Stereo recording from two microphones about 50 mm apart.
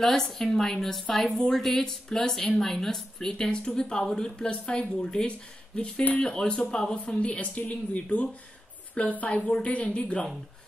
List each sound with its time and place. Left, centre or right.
0.0 s a woman's voice: centre
7.2 s a woman's voice: left